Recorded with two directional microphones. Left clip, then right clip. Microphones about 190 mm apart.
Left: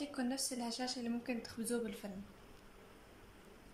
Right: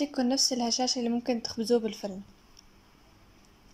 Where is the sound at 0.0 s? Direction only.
40° right (ahead or behind).